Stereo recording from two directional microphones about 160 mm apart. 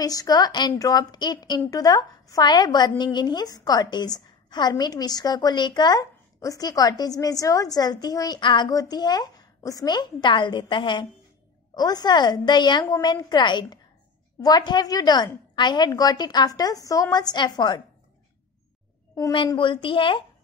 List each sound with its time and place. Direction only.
0.0 s a woman's voice: 25° left (ahead or behind)
19.1 s a woman's voice: 25° left (ahead or behind)